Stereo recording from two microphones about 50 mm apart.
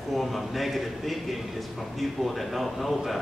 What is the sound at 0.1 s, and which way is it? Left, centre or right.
A man's voice, centre.